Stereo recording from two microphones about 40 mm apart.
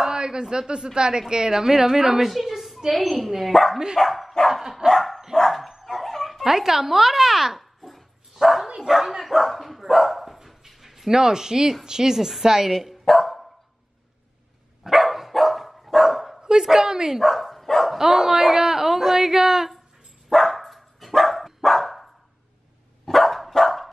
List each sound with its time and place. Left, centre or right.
0.0 s a man's voice: centre
4.8 s dog: centre
6.4 s a sound: centre
8.6 s bow-wow: centre
8.9 s dog: centre
11.8 s speech: centre
13.0 s dog: centre
14.8 s dog: centre
17.2 s speech: centre
17.9 s speech: centre
20.2 s dog: centre